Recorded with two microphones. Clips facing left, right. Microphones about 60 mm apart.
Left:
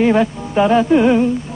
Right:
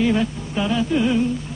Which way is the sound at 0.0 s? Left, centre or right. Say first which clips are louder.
Left 6 dB; left.